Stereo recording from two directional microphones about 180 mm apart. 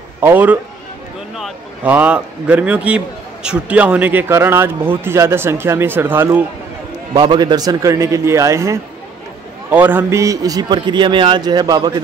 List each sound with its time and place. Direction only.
0.2 s speech: 10° right (ahead or behind)
7.2 s a man's voice: 25° right (ahead or behind)